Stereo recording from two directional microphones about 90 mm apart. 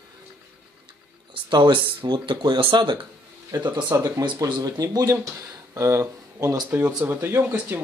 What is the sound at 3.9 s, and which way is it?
Speech, 45° right (ahead or behind).